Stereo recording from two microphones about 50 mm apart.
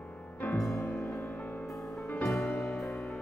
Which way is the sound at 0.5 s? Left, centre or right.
Left.